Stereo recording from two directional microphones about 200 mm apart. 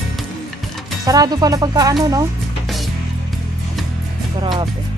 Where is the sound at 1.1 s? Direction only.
20° right (ahead or behind).